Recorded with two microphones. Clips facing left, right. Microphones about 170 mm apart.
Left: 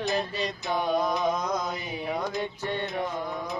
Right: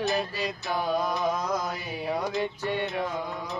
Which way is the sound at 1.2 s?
5° right (ahead or behind).